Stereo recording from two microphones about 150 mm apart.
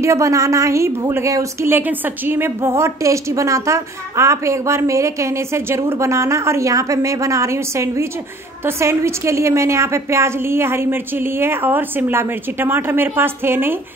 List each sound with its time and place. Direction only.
0.0 s a woman's voice: 20° right (ahead or behind)